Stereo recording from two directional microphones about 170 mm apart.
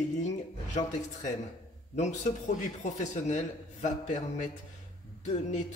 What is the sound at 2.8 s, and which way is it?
A man's voice, 45° left (ahead or behind).